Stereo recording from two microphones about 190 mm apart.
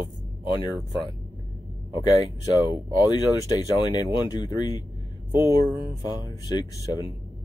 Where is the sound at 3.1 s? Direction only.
20° left (ahead or behind).